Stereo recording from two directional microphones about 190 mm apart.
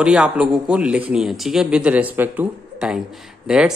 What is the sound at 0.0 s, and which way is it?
A man's voice, 5° right (ahead or behind).